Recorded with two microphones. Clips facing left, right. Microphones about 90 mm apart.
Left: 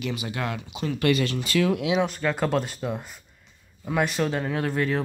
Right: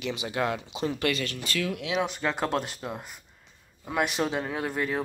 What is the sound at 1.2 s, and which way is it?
Speech, 20° left (ahead or behind).